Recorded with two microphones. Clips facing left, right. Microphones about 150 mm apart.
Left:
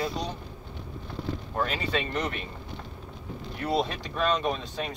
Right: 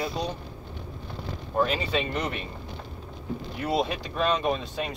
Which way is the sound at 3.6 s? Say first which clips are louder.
Right 1 dB; 5° right (ahead or behind).